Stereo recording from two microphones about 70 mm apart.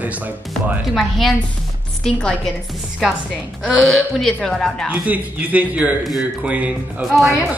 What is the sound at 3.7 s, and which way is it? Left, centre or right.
A woman's voice, centre.